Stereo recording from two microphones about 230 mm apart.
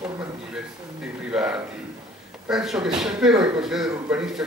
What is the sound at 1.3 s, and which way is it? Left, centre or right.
A man's voice, centre.